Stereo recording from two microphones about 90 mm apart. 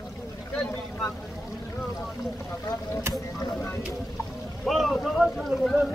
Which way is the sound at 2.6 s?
40° left (ahead or behind).